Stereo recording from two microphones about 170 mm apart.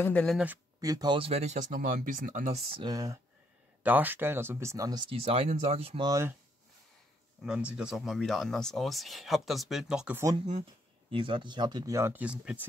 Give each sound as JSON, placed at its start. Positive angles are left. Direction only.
{"t": 0.0, "sound": "speech", "side_deg": 10}
{"t": 0.7, "sound": "speech", "side_deg": -20}
{"t": 2.8, "sound": "speech", "side_deg": -20}
{"t": 3.8, "sound": "speech", "side_deg": -10}
{"t": 5.1, "sound": "speech", "side_deg": -35}
{"t": 6.0, "sound": "speech", "side_deg": -20}
{"t": 7.4, "sound": "speech", "side_deg": -5}
{"t": 11.1, "sound": "speech", "side_deg": -30}